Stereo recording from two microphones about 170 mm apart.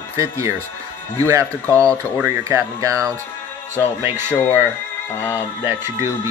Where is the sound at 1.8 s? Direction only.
15° right (ahead or behind).